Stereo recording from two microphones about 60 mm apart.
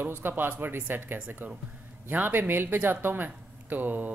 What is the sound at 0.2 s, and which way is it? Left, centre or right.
Speech, right.